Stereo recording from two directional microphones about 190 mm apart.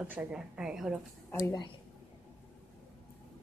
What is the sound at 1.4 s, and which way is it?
Speech, 20° left (ahead or behind).